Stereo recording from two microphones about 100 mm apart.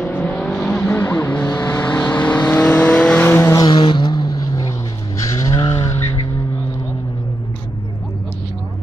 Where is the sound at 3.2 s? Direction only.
25° left (ahead or behind).